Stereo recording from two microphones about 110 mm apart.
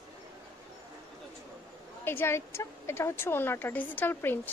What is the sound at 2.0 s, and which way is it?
A woman's voice, 20° left (ahead or behind).